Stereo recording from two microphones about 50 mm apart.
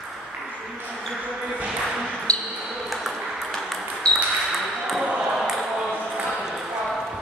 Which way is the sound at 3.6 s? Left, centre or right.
Centre.